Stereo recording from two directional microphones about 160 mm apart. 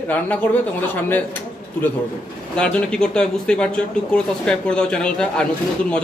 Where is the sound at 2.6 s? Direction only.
5° left (ahead or behind).